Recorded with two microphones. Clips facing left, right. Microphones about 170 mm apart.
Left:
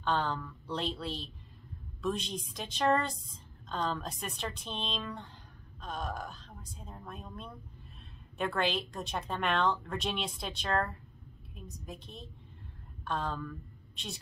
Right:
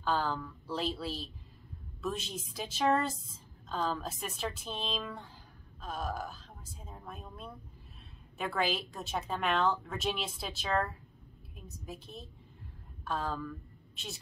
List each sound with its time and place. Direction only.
0.0 s a woman's voice: centre (ahead or behind)